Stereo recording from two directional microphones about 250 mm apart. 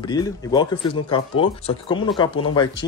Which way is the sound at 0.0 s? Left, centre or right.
Centre.